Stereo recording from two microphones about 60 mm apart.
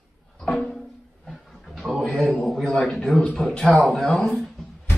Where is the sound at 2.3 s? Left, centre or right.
Centre.